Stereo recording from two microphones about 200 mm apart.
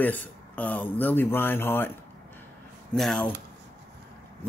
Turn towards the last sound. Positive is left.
turn(degrees=5)  # may be behind; listen again after turning